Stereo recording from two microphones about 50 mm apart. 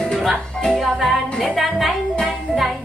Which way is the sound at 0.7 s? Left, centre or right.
Centre.